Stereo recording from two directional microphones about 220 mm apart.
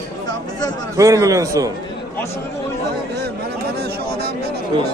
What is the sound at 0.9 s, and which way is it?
Speech, 15° right (ahead or behind).